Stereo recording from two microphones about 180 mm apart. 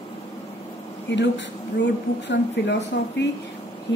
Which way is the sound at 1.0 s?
80° left.